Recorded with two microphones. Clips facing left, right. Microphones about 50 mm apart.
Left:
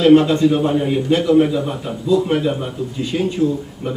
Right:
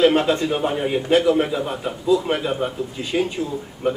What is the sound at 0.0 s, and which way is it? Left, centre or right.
Speech, centre.